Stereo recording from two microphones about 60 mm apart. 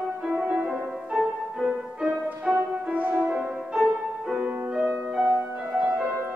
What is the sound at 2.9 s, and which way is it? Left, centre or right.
Music, right.